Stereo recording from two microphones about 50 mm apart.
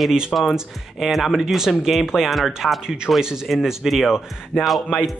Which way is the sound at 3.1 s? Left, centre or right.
Left.